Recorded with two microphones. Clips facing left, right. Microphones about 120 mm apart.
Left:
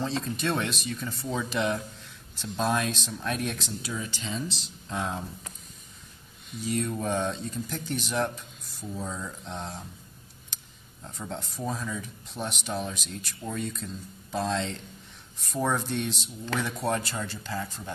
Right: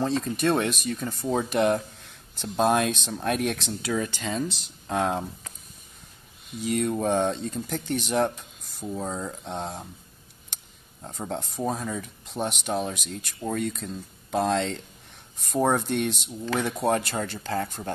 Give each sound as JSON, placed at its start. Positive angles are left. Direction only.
{"t": 0.0, "sound": "speech", "side_deg": -50}
{"t": 6.6, "sound": "speech", "side_deg": -65}
{"t": 11.1, "sound": "speech", "side_deg": -55}